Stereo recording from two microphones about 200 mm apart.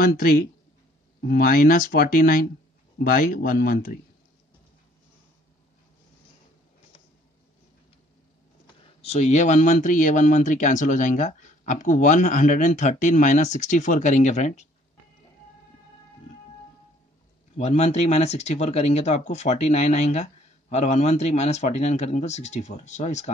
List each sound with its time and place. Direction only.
0.0 s speech: 50° left (ahead or behind)
9.0 s speech: 35° left (ahead or behind)
17.6 s speech: 30° left (ahead or behind)